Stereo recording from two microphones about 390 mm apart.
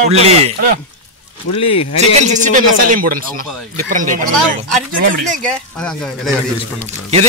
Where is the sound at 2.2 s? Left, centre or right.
Centre.